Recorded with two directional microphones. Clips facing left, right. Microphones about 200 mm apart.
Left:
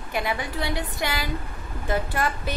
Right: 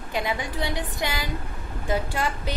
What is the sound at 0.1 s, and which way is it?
A woman's voice, 20° right (ahead or behind).